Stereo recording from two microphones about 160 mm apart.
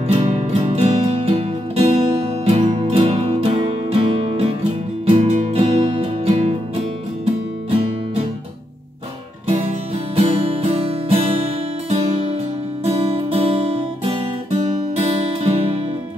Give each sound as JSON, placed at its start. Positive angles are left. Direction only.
{"t": 0.1, "sound": "music", "side_deg": -40}
{"t": 10.1, "sound": "music", "side_deg": -40}